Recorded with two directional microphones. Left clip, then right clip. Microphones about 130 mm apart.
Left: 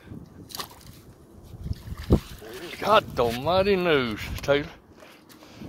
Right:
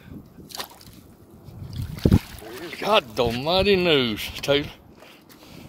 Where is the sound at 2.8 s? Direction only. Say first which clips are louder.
Even; 10° right (ahead or behind).